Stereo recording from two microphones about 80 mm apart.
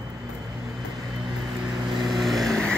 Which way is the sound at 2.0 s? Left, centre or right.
Centre.